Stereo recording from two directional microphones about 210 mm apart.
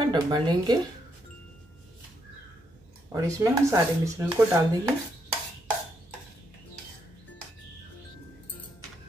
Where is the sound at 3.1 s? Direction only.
15° right (ahead or behind).